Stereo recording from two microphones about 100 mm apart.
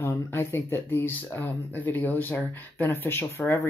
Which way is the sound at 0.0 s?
25° left (ahead or behind).